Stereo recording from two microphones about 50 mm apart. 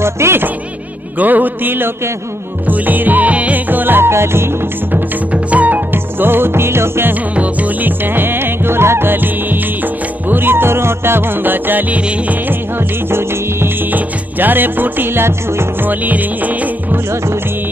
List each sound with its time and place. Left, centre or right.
0.0 s music: right
1.1 s music: right
4.1 s music: right
5.3 s music: right
6.1 s music: right
7.3 s music: right
13.9 s music: right